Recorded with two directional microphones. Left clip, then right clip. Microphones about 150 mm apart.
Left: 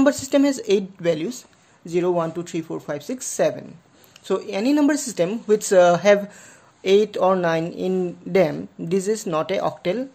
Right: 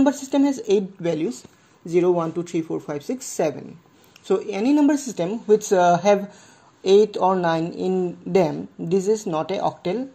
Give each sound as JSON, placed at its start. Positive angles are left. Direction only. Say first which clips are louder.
{"t": 0.0, "sound": "a woman's voice", "louder": "left 2 dB", "side_deg": 25}